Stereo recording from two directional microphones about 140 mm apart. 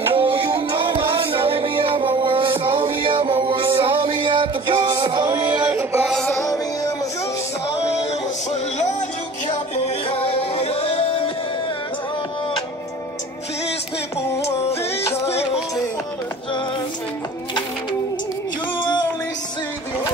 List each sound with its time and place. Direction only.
0.1 s music: 40° right (ahead or behind)
5.3 s music: 10° right (ahead or behind)
6.1 s music: 5° left (ahead or behind)
6.4 s music: 25° left (ahead or behind)
10.0 s music: 40° left (ahead or behind)
14.7 s music: 45° left (ahead or behind)